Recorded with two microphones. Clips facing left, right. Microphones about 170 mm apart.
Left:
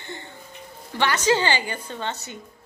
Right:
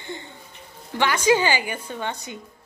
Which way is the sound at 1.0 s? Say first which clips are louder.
Right 2 dB; 10° right (ahead or behind).